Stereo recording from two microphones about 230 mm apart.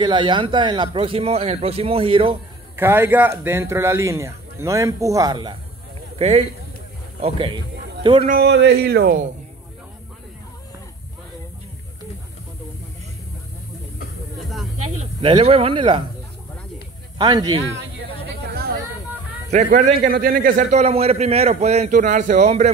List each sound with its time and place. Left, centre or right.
0.0 s speech: centre
2.7 s a man's voice: centre
8.3 s speech: right
14.4 s a sound: centre
15.2 s speech: right
17.2 s speech: centre
18.4 s a sound: right
19.5 s a man's voice: right